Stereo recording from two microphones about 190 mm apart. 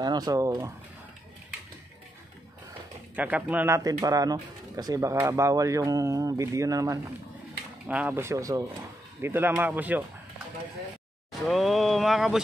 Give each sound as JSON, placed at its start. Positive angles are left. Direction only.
{"t": 0.0, "sound": "speech", "side_deg": -20}
{"t": 3.2, "sound": "speech", "side_deg": -10}
{"t": 11.4, "sound": "speech", "side_deg": 0}